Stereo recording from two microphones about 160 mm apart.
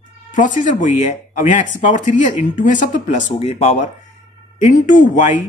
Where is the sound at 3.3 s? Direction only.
40° left (ahead or behind).